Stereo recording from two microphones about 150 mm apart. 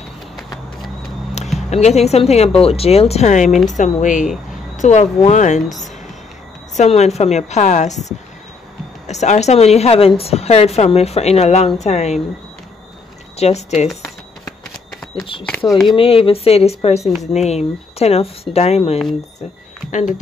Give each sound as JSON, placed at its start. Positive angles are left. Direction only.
{"t": 1.7, "sound": "a woman's voice", "side_deg": 45}
{"t": 13.4, "sound": "a woman's voice", "side_deg": 45}
{"t": 15.9, "sound": "a woman's voice", "side_deg": 40}
{"t": 19.9, "sound": "speech", "side_deg": 55}